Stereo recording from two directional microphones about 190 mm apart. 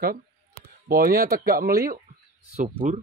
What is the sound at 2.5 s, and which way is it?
Speech, 40° right (ahead or behind).